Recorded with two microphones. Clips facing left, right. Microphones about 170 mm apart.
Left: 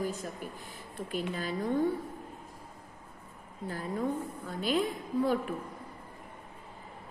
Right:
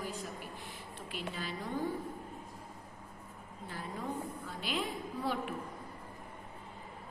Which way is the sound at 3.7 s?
45° left (ahead or behind).